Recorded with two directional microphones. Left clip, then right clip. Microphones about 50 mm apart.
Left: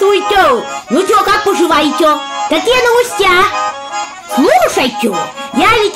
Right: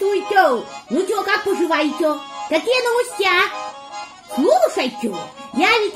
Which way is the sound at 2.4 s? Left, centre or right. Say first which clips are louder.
Left 7 dB; right.